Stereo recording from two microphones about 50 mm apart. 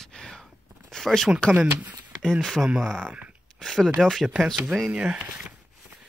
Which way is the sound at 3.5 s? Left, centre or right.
Centre.